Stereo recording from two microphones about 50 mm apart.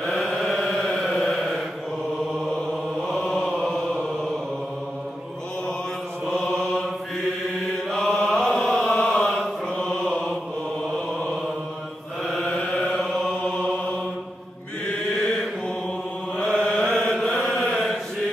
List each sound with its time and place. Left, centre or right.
0.0 s chant: centre
1.1 s mantra: centre
3.1 s mantra: centre
6.2 s mantra: centre
7.9 s chant: centre
9.7 s mantra: centre
10.9 s a sound: centre
12.4 s chant: centre
13.4 s mantra: centre
16.3 s mantra: centre